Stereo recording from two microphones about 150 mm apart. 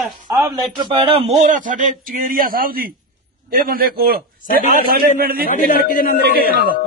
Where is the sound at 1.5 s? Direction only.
60° right (ahead or behind); by 5.0 s 75° right (ahead or behind).